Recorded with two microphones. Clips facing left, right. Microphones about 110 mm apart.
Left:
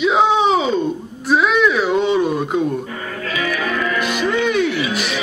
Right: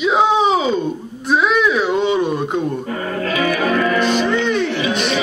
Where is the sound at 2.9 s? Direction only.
40° right (ahead or behind).